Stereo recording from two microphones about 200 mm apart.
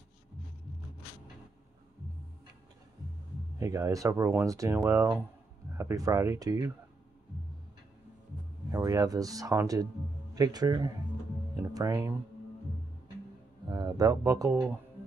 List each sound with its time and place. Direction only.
3.5 s speech: 15° right (ahead or behind)
8.7 s a man's voice: 15° right (ahead or behind)
13.7 s speech: 20° right (ahead or behind)